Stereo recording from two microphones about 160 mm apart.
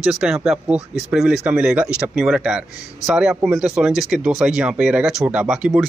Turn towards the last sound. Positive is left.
turn(degrees=-5)  # may be behind; listen again after turning